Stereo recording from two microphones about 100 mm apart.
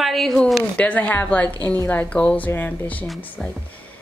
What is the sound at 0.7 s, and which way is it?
A woman's voice, 15° left (ahead or behind).